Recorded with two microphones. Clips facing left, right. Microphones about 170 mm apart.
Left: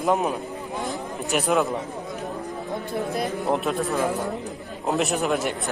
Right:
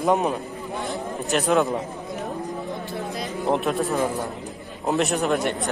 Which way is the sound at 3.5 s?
Centre (ahead or behind).